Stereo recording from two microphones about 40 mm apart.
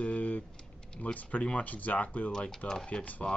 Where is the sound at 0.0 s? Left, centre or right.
Left.